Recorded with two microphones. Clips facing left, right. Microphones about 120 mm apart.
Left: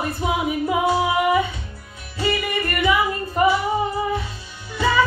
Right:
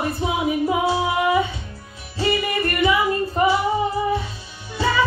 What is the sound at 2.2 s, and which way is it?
Music, 25° right (ahead or behind).